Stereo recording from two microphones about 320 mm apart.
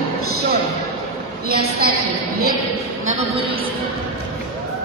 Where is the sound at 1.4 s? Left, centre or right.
Right.